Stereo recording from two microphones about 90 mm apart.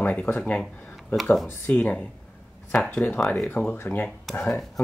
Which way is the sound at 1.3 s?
5° left (ahead or behind).